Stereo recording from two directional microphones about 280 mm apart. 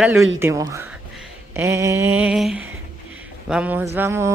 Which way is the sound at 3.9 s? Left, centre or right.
Centre.